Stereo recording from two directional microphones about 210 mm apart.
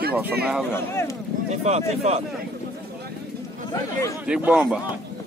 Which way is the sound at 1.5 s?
30° right (ahead or behind).